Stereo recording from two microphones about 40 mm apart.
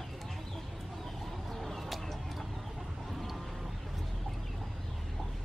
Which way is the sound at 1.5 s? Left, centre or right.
Centre.